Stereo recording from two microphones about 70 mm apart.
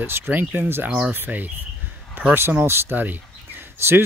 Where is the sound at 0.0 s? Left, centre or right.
Right.